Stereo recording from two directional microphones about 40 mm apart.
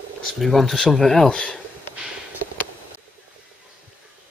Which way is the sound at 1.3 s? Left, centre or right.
Left.